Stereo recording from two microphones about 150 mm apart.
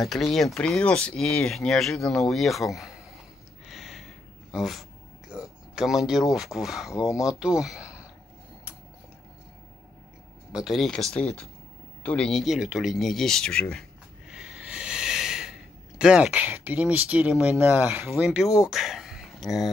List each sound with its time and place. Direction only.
0.0 s speech: centre (ahead or behind)
3.6 s a sound: centre (ahead or behind)
5.3 s speech: 5° right (ahead or behind)
7.1 s speech: 20° left (ahead or behind)
7.3 s speech: 5° right (ahead or behind)
10.5 s speech: centre (ahead or behind)